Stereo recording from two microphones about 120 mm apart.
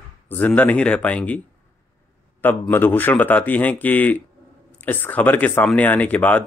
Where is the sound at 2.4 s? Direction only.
15° left (ahead or behind).